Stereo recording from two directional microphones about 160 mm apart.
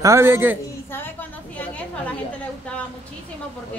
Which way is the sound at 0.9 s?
10° left (ahead or behind).